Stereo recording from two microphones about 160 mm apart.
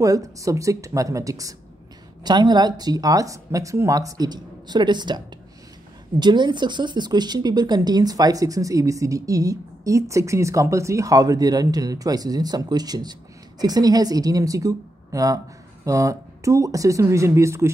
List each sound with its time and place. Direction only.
0.0 s a woman's voice: 20° right (ahead or behind)